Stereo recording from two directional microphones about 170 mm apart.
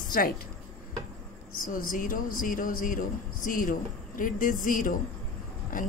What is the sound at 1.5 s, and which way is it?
A woman's voice, 55° left (ahead or behind).